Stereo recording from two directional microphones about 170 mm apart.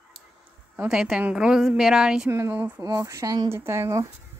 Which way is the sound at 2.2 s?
15° right (ahead or behind).